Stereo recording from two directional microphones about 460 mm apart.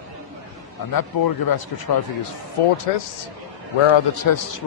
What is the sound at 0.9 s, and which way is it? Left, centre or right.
A man's voice, left.